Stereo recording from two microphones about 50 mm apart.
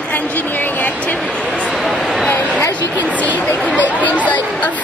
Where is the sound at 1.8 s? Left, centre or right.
Centre.